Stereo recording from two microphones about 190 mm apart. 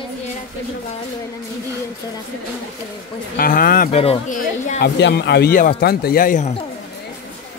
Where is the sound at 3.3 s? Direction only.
50° left (ahead or behind).